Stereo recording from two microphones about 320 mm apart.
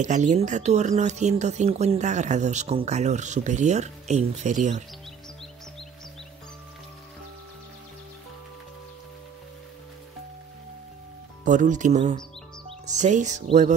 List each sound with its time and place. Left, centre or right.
0.0 s speech: right
11.4 s speech: right